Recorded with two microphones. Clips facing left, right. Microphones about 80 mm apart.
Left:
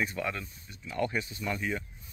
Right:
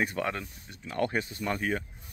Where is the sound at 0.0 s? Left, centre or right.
Right.